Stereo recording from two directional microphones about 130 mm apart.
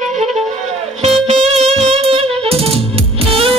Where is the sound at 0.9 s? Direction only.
50° right (ahead or behind).